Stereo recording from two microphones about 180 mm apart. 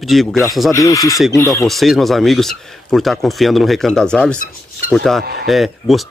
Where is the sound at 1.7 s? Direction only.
Centre (ahead or behind).